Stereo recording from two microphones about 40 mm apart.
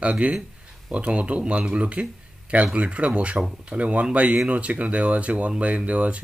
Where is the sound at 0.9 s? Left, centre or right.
Right.